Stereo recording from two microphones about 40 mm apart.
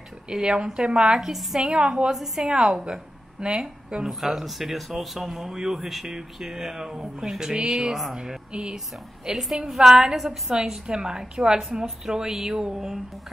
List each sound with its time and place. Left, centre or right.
0.3 s a woman's voice: centre
1.3 s a woman's voice: centre
1.8 s a woman's voice: right
2.1 s a woman's voice: centre
2.4 s a woman's voice: right
4.1 s a woman's voice: centre; by 8.7 s right
8.7 s a woman's voice: centre